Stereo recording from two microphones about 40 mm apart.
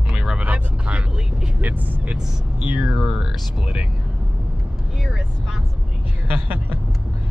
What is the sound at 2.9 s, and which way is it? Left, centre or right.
Speech, centre.